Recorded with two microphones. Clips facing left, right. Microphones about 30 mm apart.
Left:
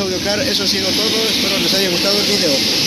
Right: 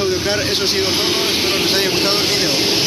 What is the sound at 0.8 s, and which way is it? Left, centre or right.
Speech, centre.